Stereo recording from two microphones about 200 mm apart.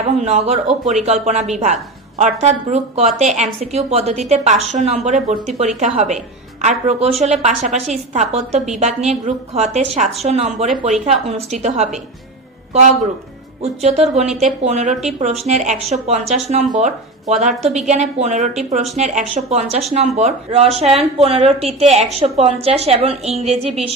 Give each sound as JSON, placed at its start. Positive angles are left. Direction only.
{"t": 0.2, "sound": "a woman's voice", "side_deg": -35}
{"t": 13.6, "sound": "a woman's voice", "side_deg": -35}